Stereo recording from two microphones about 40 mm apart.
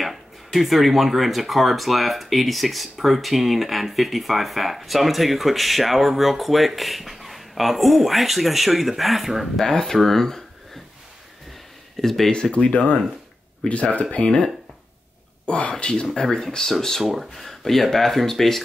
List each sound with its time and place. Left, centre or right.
0.0 s speech: centre
9.7 s speech: centre
9.9 s a sound: centre
12.0 s speech: centre
12.3 s speech: left
15.4 s speech: left
16.2 s speech: centre
17.0 s speech: centre
17.3 s speech: centre